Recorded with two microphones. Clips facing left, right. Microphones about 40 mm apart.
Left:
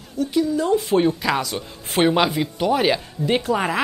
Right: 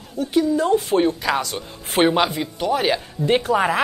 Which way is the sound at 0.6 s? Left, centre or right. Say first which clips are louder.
Even; centre.